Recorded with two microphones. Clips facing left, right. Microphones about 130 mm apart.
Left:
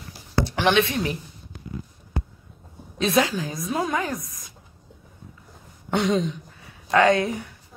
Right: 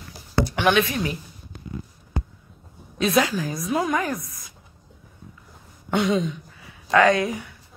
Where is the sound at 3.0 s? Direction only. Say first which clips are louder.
Right 1 dB; 30° left (ahead or behind).